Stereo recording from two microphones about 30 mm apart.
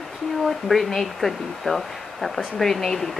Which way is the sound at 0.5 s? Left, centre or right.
Centre.